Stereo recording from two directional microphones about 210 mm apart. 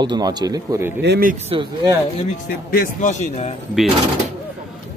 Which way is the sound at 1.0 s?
45° right (ahead or behind).